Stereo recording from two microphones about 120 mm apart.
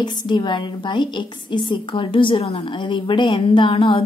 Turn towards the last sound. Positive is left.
turn(degrees=50)  # may be behind; listen again after turning